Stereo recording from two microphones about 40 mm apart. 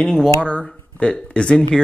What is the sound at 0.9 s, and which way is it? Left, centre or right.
Speech, left.